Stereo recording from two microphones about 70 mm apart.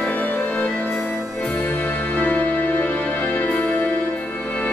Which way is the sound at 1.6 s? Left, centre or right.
Left.